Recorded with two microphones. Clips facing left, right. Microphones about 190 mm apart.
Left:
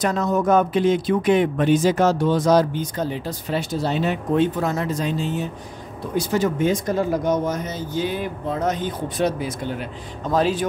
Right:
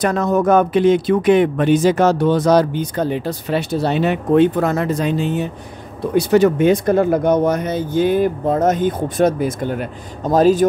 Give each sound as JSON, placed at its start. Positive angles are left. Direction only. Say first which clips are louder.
{"t": 0.0, "sound": "speech", "louder": "right 4 dB", "side_deg": -60}